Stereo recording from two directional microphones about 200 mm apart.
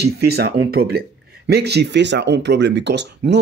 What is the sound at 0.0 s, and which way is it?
Speech, 55° right (ahead or behind).